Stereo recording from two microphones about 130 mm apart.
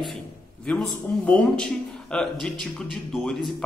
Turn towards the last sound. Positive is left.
turn(degrees=0)  # may be behind; listen again after turning